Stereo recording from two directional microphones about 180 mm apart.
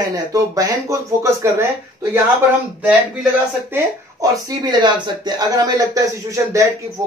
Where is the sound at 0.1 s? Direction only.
20° right (ahead or behind).